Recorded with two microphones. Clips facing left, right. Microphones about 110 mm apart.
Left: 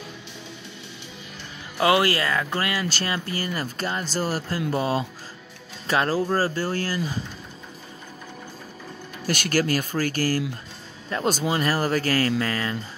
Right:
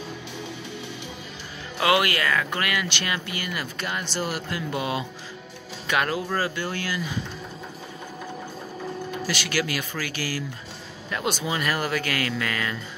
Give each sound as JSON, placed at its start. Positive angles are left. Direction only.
{"t": 1.8, "sound": "speech", "side_deg": 30}
{"t": 9.3, "sound": "speech", "side_deg": 45}